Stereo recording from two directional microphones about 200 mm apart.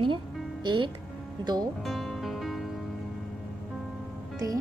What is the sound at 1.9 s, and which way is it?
Music, centre (ahead or behind).